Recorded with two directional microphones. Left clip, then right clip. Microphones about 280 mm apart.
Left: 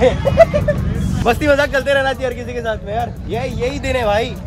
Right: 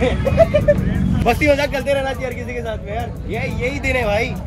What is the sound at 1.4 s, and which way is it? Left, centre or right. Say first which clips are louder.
Speech: left 4 dB; centre.